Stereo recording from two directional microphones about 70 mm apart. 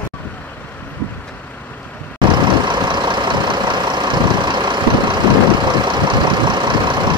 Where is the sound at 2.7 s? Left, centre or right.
Right.